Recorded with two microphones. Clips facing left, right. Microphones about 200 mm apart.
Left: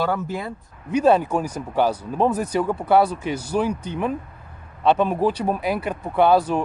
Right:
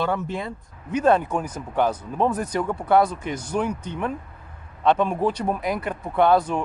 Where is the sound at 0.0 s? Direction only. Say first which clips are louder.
Left 1 dB; 5° left (ahead or behind).